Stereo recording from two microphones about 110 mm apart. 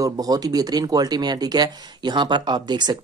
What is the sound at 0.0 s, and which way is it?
Speech, 35° right (ahead or behind).